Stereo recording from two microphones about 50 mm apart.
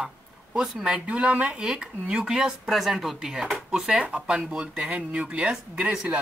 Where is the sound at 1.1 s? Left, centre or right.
Right.